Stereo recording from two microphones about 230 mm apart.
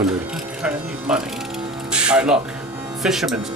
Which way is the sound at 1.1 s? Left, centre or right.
Centre.